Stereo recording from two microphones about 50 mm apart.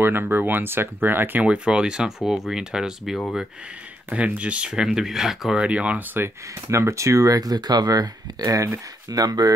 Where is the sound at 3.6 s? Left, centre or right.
Right; by 5.5 s centre.